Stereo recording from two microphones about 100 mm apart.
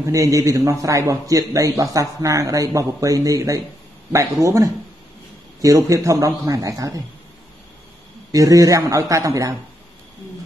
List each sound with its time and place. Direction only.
0.1 s a man's voice: 35° right (ahead or behind)
8.3 s a man's voice: 35° right (ahead or behind)